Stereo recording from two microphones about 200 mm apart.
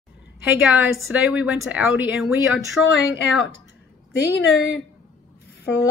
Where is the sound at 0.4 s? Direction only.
10° right (ahead or behind).